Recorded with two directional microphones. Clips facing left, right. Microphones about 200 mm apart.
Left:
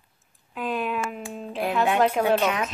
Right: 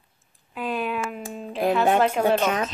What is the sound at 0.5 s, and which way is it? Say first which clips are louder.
Speech: even; centre (ahead or behind).